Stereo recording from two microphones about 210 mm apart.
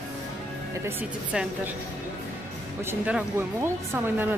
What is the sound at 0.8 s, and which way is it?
Speech, 5° right (ahead or behind).